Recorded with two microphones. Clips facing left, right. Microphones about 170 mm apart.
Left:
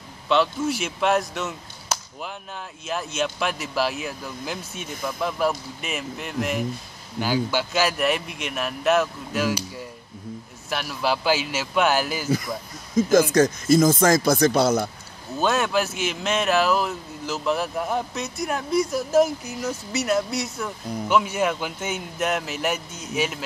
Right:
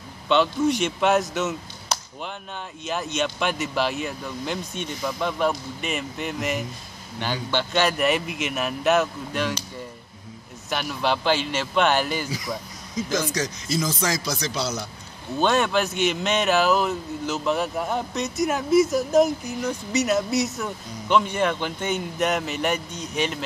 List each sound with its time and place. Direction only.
0.3 s speech: centre (ahead or behind)
1.3 s a sound: centre (ahead or behind)
2.8 s speech: centre (ahead or behind)
10.7 s speech: centre (ahead or behind)
12.9 s speech: 55° left (ahead or behind)
15.3 s speech: centre (ahead or behind)